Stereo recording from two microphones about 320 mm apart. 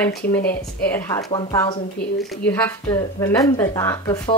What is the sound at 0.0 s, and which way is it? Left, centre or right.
A woman's voice, centre.